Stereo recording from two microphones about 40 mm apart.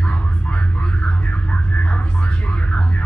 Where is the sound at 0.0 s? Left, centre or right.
Left.